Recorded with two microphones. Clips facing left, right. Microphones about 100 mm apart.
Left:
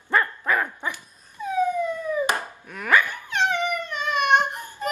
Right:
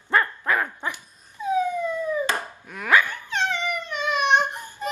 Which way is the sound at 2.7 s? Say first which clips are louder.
Even; 5° right (ahead or behind).